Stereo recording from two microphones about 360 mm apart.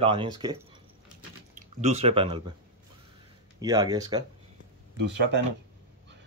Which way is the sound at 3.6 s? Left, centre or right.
Centre.